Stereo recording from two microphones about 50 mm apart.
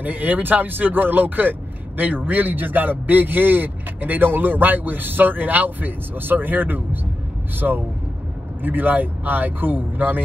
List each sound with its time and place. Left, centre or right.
0.0 s speech: right